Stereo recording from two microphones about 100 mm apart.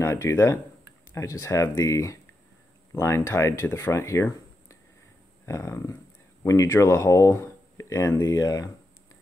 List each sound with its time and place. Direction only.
0.0 s speech: 25° left (ahead or behind)